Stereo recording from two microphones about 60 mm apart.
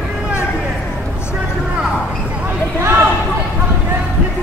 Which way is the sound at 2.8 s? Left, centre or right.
Right.